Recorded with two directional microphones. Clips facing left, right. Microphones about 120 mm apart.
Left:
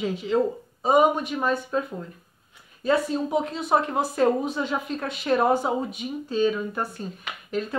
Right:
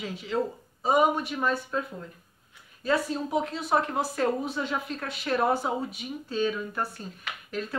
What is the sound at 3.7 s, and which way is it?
A woman's voice, 20° left (ahead or behind).